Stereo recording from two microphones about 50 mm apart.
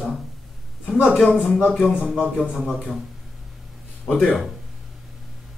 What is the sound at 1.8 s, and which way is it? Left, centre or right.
Speech, centre.